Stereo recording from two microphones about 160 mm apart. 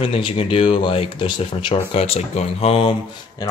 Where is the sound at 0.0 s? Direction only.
35° left (ahead or behind).